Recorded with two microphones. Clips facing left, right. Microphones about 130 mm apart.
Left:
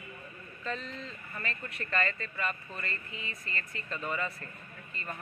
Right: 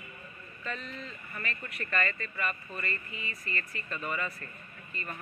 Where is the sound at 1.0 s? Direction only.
30° left (ahead or behind).